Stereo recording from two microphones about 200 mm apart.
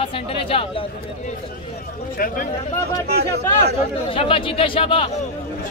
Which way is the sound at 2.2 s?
45° left (ahead or behind).